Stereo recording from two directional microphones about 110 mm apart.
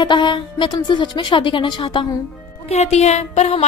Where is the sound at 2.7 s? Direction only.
80° left.